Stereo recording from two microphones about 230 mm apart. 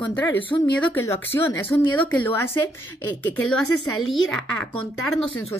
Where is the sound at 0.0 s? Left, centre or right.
Centre.